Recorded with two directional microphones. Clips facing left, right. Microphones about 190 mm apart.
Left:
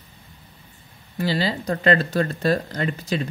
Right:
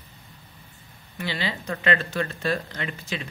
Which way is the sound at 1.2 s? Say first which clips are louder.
Left 7 dB; 35° left (ahead or behind).